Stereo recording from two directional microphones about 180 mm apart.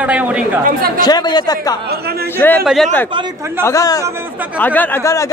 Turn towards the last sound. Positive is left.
turn(degrees=15)  # may be behind; listen again after turning